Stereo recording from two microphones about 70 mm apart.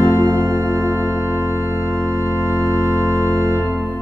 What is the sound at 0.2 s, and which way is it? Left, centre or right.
Organ, right.